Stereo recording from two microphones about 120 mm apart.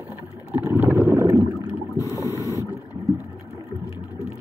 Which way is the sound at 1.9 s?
30° left (ahead or behind).